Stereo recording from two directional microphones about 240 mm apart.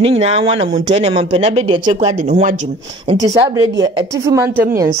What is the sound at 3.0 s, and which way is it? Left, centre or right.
A woman's voice, centre.